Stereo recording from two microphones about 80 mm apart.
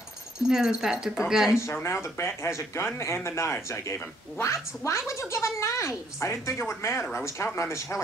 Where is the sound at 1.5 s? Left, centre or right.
Left.